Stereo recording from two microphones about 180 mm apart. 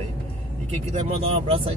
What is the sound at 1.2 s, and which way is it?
Speech, 35° right (ahead or behind).